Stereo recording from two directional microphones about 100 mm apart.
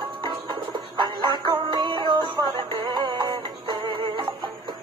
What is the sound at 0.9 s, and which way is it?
Music, 50° right (ahead or behind).